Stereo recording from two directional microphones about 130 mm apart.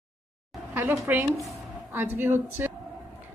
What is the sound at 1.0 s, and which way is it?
Speech, 15° right (ahead or behind).